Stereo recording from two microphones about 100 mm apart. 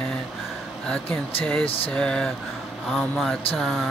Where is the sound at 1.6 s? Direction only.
70° left (ahead or behind).